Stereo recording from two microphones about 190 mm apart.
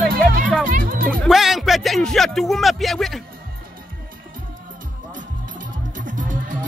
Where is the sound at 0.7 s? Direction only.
50° right (ahead or behind).